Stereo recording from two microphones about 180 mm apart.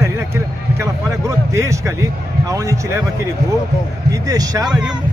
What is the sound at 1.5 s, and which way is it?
Speech, 15° right (ahead or behind).